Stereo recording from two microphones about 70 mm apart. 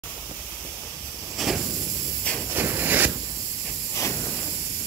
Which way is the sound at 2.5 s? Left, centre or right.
Right.